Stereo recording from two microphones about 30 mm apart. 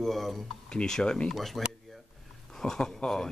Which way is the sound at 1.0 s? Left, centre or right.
Left.